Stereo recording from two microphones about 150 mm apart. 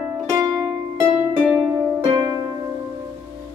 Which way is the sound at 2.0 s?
30° right (ahead or behind).